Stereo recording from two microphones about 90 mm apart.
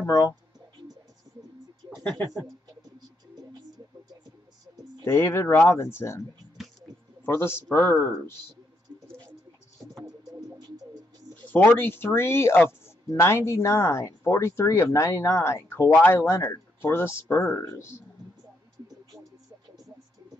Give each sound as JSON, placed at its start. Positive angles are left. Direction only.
{"t": 0.0, "sound": "speech", "side_deg": 35}
{"t": 5.0, "sound": "speech", "side_deg": 25}
{"t": 7.2, "sound": "speech", "side_deg": 25}
{"t": 11.4, "sound": "speech", "side_deg": 20}